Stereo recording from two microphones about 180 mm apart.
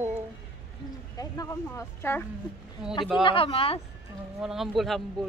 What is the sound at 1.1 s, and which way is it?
Speech, 15° left (ahead or behind).